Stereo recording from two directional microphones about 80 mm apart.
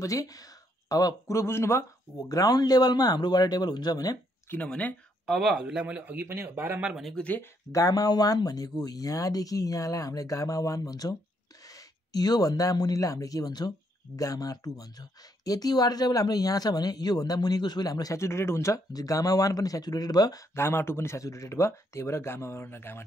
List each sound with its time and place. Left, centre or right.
0.0 s speech: left
4.6 s speech: centre
5.2 s speech: centre
6.2 s speech: right
7.2 s speech: centre
7.7 s speech: left
18.9 s speech: left
20.5 s speech: left